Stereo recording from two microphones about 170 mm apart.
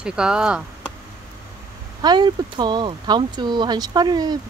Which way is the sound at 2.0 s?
25° right (ahead or behind).